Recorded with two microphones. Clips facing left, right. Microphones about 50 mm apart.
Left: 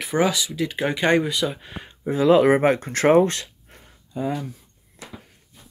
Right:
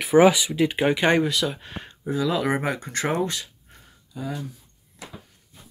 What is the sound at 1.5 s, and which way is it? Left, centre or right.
Speech, centre.